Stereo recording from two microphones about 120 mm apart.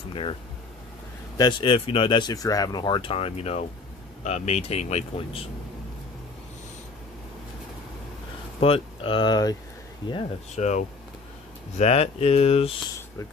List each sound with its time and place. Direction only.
0.1 s speech: 45° left (ahead or behind)
1.4 s speech: 45° left (ahead or behind)
2.3 s speech: 30° left (ahead or behind); by 3.6 s 60° left (ahead or behind)
4.2 s speech: 75° left (ahead or behind); by 5.4 s 60° left (ahead or behind)
8.5 s speech: 50° left (ahead or behind); by 9.6 s 35° left (ahead or behind)
10.0 s speech: 45° left (ahead or behind)
10.5 s speech: 75° left (ahead or behind)
11.7 s speech: 60° left (ahead or behind)